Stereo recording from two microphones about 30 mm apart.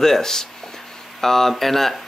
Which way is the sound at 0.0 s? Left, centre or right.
Centre.